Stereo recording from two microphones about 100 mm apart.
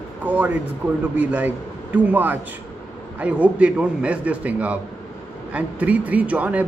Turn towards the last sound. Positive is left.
turn(degrees=-15)  # may be behind; listen again after turning